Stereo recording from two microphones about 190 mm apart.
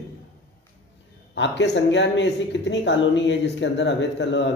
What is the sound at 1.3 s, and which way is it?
Speech, 70° left (ahead or behind).